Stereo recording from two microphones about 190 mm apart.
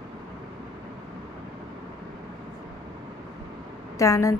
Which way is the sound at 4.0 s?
15° left (ahead or behind).